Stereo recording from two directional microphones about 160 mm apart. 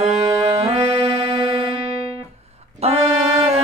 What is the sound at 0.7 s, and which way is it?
Music, 40° right (ahead or behind).